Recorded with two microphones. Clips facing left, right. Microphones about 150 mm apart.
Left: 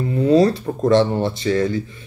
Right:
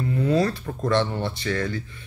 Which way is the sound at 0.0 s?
25° left (ahead or behind).